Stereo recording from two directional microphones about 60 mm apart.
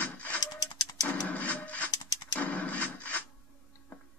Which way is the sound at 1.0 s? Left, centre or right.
Left.